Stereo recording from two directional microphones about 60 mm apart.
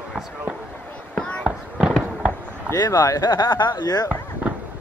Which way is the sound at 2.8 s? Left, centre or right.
Left.